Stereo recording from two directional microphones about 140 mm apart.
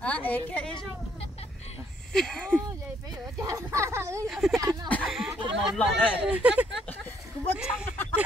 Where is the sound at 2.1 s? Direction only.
5° left (ahead or behind).